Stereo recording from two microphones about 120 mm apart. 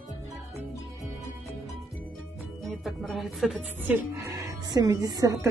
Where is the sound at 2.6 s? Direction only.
Centre (ahead or behind).